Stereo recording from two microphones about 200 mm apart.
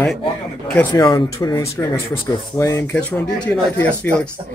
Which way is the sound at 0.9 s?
20° left (ahead or behind).